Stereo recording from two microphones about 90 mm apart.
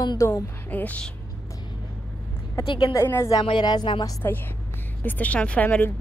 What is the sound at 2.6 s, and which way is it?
Speech, 90° left.